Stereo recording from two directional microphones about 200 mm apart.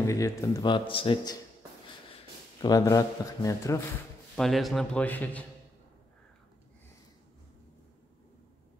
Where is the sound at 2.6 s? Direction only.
20° left (ahead or behind).